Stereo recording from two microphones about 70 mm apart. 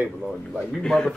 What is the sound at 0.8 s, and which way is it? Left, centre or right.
Speech, centre.